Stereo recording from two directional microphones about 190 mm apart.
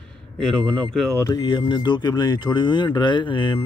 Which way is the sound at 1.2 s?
20° left (ahead or behind).